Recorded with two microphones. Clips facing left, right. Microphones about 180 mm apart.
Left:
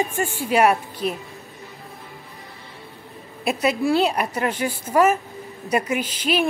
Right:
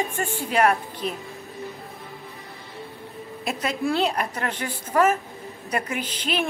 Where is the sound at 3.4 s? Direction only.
10° left (ahead or behind).